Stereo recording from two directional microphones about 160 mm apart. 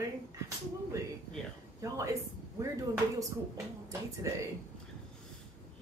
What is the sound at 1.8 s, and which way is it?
Speech, 20° right (ahead or behind).